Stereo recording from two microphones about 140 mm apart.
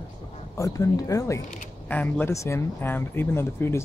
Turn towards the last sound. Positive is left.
turn(degrees=15)  # may be behind; listen again after turning